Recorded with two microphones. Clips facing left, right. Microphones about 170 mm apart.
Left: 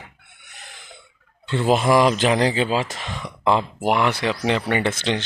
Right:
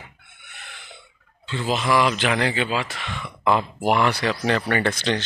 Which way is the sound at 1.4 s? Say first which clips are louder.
Left 6 dB; 60° left (ahead or behind).